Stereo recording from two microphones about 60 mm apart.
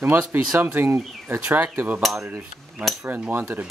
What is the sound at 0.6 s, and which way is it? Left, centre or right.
Speech, right.